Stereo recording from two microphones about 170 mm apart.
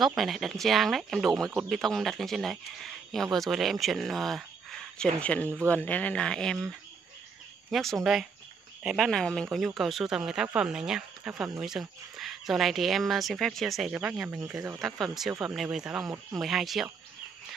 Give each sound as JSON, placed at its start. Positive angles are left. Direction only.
{"t": 0.0, "sound": "speech", "side_deg": 0}
{"t": 7.7, "sound": "speech", "side_deg": 0}